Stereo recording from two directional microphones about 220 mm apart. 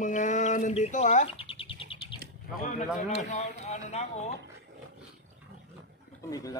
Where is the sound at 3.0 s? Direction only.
30° left (ahead or behind).